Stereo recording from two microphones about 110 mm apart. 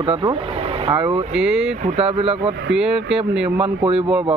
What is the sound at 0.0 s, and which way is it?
Speech, 55° right (ahead or behind).